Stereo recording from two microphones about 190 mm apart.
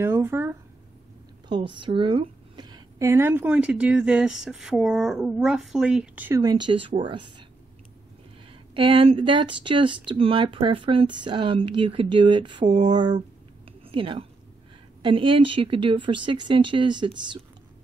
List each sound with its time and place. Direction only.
0.0 s a sound: 10° right (ahead or behind)
1.5 s a woman's voice: 25° right (ahead or behind)
8.7 s a woman's voice: 25° right (ahead or behind)